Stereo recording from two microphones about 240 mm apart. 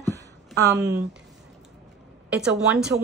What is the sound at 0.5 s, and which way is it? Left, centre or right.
Speech, right.